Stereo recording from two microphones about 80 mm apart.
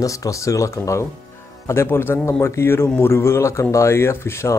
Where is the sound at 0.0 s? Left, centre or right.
Left.